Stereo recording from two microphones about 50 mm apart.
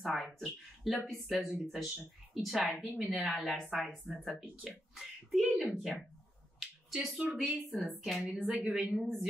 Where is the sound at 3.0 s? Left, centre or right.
Centre.